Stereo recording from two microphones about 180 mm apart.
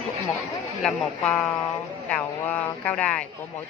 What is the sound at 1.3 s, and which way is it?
Speech, 15° left (ahead or behind).